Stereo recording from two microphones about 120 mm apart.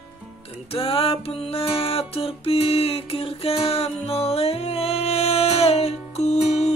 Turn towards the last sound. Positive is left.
turn(degrees=70)  # may be behind; listen again after turning